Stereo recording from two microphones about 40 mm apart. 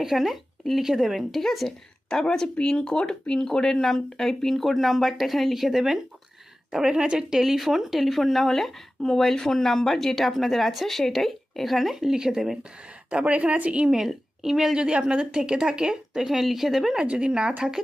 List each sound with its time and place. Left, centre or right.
0.0 s speech: centre
1.3 s speech: centre
2.2 s speech: centre
6.7 s speech: centre
13.1 s a woman's voice: right
13.8 s a woman's voice: centre
14.8 s speech: right
16.3 s speech: centre
16.9 s speech: right